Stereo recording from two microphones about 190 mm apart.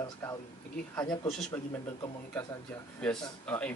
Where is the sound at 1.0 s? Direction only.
5° left (ahead or behind).